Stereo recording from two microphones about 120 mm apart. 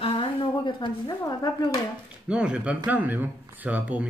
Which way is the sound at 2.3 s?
10° right (ahead or behind).